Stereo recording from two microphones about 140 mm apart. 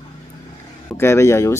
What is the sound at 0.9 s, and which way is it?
Speech, 20° left (ahead or behind).